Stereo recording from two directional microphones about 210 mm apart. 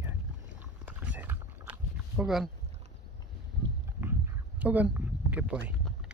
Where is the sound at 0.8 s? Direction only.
10° right (ahead or behind).